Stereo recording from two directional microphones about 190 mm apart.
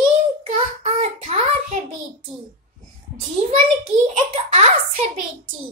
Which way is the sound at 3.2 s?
40° right (ahead or behind).